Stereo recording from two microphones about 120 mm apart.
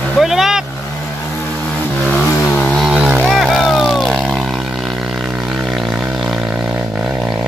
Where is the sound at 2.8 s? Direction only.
5° right (ahead or behind).